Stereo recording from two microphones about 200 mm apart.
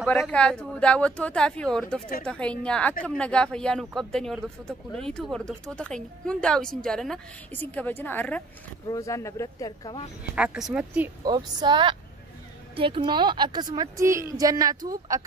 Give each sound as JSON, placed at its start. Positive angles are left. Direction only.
{"t": 0.0, "sound": "a woman's voice", "side_deg": 0}
{"t": 10.3, "sound": "a woman's voice", "side_deg": -5}
{"t": 11.2, "sound": "a woman's voice", "side_deg": -20}